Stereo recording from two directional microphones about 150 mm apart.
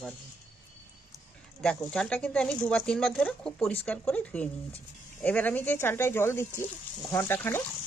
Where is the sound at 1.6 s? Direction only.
5° left (ahead or behind).